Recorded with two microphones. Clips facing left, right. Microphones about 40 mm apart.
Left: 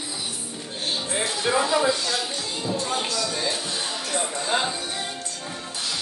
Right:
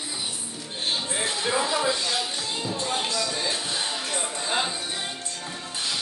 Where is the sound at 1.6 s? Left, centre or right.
Centre.